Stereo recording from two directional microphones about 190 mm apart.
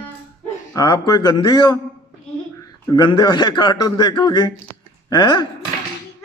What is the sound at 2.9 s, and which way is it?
A man's voice, 25° left (ahead or behind).